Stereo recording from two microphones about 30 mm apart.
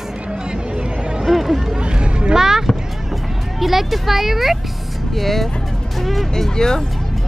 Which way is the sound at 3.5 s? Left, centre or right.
Centre.